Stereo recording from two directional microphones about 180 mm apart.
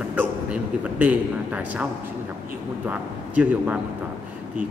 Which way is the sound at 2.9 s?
10° right (ahead or behind).